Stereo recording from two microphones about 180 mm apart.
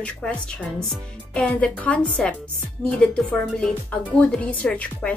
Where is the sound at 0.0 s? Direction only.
5° left (ahead or behind).